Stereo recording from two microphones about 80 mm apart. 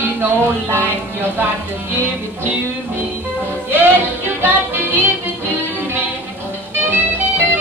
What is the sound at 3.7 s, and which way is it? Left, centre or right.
Music, right.